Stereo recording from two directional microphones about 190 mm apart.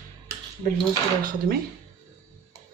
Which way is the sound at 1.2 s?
50° right (ahead or behind).